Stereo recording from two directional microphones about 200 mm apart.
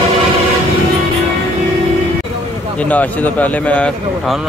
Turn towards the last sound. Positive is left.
turn(degrees=5)  # may be behind; listen again after turning